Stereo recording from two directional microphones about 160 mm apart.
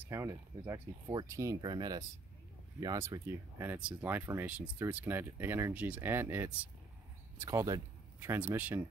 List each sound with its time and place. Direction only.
0.0 s speech: 15° right (ahead or behind)